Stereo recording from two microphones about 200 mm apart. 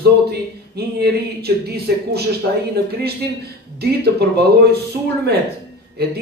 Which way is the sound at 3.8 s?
55° right (ahead or behind).